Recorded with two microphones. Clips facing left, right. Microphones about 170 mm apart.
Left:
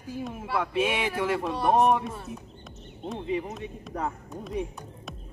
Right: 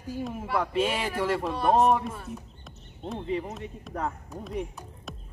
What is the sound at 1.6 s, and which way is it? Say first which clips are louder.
Speech: even; 15° left (ahead or behind).